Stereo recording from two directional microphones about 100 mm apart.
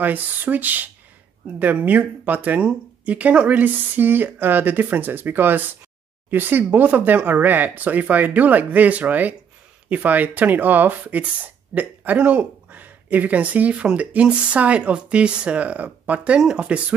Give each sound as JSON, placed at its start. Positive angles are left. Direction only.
{"t": 0.0, "sound": "speech", "side_deg": -20}